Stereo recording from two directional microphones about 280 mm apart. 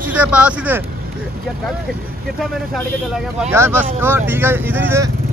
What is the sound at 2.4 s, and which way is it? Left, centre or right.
Speech, centre.